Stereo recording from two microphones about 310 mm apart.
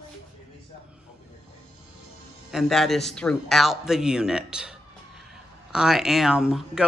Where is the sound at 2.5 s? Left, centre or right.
Centre.